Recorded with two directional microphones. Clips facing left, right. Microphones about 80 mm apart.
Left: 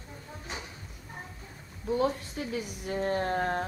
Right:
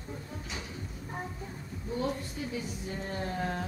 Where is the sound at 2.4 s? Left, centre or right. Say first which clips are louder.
Left 2 dB; left.